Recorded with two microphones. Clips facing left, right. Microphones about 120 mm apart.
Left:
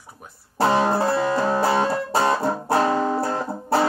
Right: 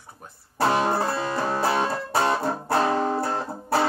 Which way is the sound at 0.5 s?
25° left (ahead or behind).